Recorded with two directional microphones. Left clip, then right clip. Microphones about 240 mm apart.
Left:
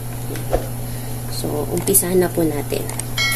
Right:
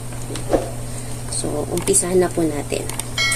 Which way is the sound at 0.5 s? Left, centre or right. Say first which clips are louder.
Right 3 dB; centre.